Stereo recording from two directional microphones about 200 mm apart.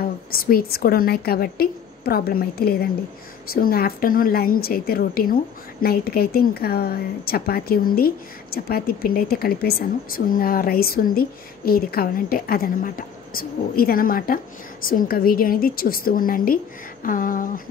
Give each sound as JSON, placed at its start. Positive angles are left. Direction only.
{"t": 0.0, "sound": "a woman's voice", "side_deg": 45}